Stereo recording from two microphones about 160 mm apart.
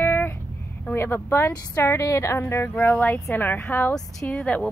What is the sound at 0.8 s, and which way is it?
Speech, 15° left (ahead or behind).